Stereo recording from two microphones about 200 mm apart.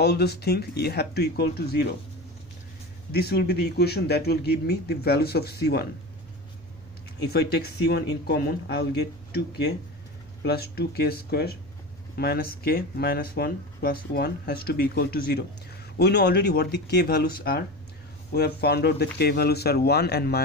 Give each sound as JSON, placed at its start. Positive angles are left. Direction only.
{"t": 0.0, "sound": "speech", "side_deg": 55}
{"t": 3.1, "sound": "speech", "side_deg": 50}
{"t": 7.2, "sound": "speech", "side_deg": 55}